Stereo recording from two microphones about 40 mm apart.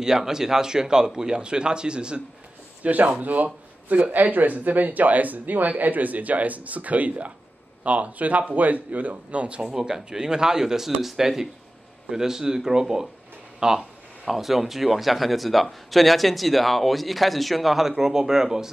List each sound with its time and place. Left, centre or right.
0.0 s a man's voice: centre
2.8 s speech: right
9.6 s a man's voice: centre
14.2 s a man's voice: centre